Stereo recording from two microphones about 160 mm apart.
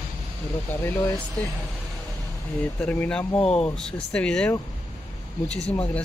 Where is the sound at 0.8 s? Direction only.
15° left (ahead or behind).